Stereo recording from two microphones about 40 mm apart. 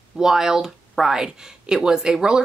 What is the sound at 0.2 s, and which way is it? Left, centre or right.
Speech, centre.